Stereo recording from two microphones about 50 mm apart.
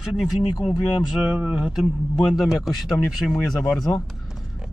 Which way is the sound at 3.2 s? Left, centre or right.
Left.